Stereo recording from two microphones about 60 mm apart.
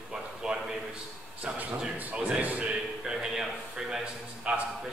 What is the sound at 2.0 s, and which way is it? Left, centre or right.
Speech, right.